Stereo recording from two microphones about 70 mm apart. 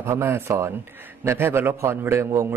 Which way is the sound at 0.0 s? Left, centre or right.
Right.